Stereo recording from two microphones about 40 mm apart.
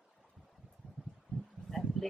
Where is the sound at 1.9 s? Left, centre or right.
Centre.